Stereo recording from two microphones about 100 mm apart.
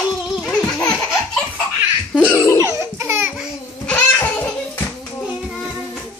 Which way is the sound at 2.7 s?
30° right (ahead or behind).